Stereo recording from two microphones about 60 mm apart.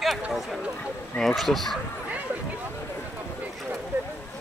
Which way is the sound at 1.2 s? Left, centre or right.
Centre.